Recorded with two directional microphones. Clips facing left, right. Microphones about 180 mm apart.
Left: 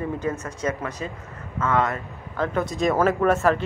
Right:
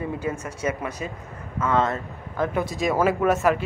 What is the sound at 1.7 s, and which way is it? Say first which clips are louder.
Speech: right 1 dB; 25° right (ahead or behind).